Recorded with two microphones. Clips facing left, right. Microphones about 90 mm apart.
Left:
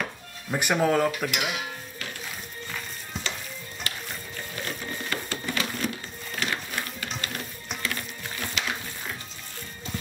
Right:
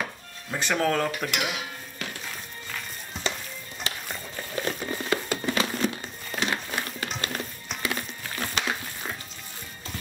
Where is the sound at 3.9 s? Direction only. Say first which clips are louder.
Right 2 dB; 25° right (ahead or behind).